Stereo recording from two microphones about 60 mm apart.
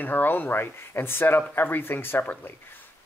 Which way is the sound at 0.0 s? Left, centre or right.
Left.